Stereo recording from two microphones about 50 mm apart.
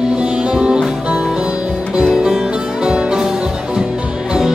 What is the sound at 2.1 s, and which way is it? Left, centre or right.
Music, centre.